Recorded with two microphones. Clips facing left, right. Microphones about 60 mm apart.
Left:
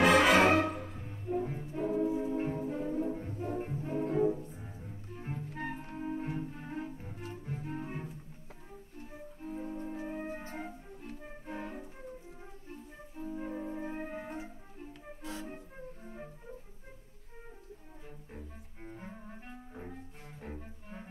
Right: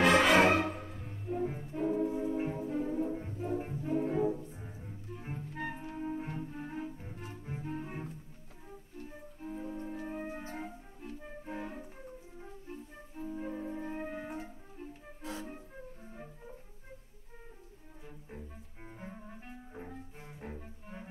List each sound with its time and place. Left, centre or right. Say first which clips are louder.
0.0 s music: left 1 dB; centre
0.6 s music: left 3 dB; left
0.8 s music: left 1 dB; centre
7.6 s double bass: right 1 dB; centre
9.7 s organ: left 1 dB; centre
11.1 s music: right 1 dB; centre
13.3 s music: even; centre
16.0 s flute: left 2 dB; centre
18.9 s cello: left 1 dB; centre
20.5 s music: even; centre